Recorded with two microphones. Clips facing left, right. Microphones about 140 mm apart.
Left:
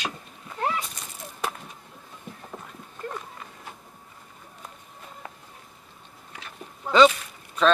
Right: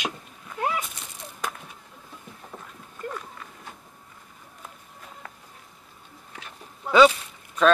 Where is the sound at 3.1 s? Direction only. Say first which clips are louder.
Even; 10° left (ahead or behind).